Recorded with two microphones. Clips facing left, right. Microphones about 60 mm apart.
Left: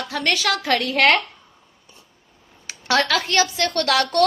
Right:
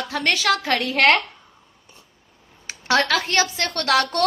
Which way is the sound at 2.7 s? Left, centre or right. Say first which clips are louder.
Even; right.